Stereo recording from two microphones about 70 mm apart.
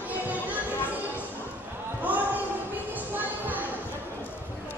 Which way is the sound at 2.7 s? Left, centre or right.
Right.